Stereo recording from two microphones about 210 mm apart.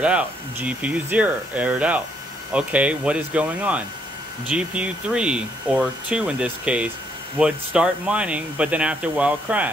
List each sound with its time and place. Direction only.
0.0 s speech: 5° right (ahead or behind)